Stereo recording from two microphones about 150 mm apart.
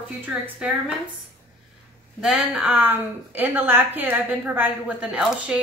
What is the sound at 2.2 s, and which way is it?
A woman's voice, 5° right (ahead or behind).